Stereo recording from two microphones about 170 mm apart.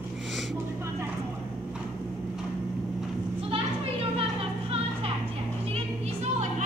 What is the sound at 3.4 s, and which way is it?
Music, 35° right (ahead or behind).